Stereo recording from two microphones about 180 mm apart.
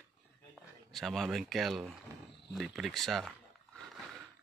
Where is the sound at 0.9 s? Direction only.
Centre (ahead or behind).